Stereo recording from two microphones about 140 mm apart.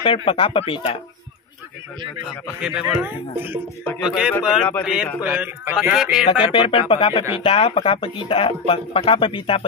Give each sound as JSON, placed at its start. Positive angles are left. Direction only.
{"t": 0.0, "sound": "speech", "side_deg": 40}
{"t": 2.4, "sound": "a man's voice", "side_deg": -10}
{"t": 6.4, "sound": "speech", "side_deg": 40}